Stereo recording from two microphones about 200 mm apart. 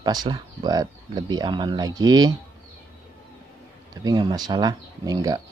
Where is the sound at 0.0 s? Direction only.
20° right (ahead or behind).